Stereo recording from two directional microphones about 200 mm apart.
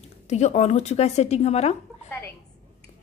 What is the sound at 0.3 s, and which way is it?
A woman's voice, 35° left (ahead or behind).